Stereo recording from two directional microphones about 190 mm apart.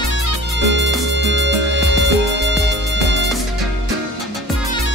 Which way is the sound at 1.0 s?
70° right (ahead or behind).